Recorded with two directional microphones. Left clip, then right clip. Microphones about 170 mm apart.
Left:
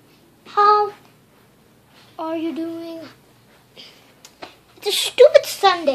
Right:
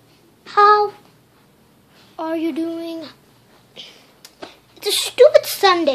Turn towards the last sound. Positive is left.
turn(degrees=-30)  # may be behind; listen again after turning